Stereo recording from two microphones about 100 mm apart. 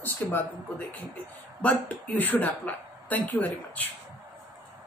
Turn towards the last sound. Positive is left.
turn(degrees=15)  # may be behind; listen again after turning